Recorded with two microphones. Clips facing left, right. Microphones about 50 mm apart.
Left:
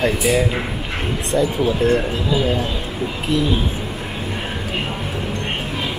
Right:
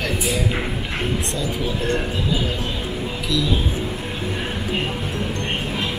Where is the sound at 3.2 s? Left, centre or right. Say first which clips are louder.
Left 4 dB; left.